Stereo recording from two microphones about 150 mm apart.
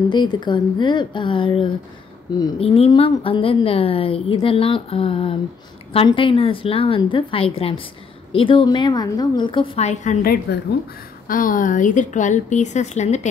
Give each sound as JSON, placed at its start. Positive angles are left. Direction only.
{"t": 0.1, "sound": "a woman's voice", "side_deg": 30}
{"t": 10.2, "sound": "a woman's voice", "side_deg": 90}
{"t": 11.2, "sound": "a woman's voice", "side_deg": 65}